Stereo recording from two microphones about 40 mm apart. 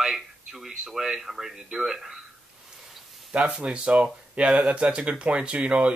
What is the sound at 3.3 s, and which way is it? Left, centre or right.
Speech, right.